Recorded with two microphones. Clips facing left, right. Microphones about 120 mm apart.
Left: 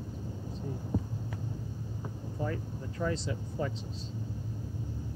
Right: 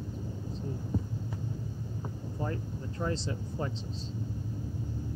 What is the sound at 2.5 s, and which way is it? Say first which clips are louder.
Speech: even; 35° right (ahead or behind).